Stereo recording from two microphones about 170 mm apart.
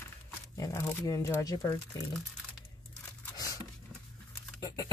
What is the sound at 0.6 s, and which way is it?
Speech, 15° left (ahead or behind).